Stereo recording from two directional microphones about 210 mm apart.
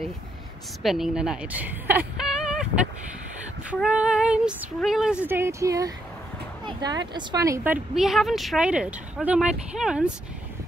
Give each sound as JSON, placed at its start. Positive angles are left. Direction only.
{"t": 0.8, "sound": "speech", "side_deg": 0}
{"t": 3.8, "sound": "speech", "side_deg": -5}
{"t": 5.3, "sound": "speech", "side_deg": -10}